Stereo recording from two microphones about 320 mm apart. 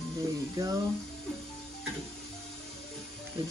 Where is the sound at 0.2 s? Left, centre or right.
Centre.